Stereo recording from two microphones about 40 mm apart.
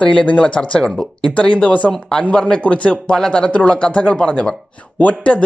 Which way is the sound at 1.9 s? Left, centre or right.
Centre.